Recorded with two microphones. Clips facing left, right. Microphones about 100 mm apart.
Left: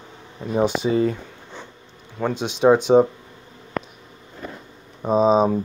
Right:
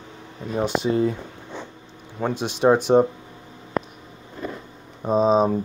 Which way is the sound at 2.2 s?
5° right (ahead or behind).